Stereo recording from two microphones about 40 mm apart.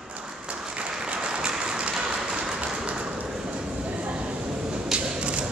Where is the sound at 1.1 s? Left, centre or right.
Right.